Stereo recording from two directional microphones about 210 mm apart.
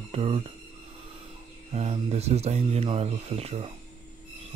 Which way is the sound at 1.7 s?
30° right (ahead or behind).